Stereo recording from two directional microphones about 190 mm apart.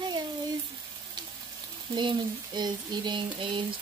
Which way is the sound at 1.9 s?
25° right (ahead or behind).